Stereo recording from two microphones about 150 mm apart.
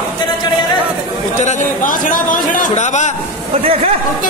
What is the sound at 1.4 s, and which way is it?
A man's voice, 50° left (ahead or behind).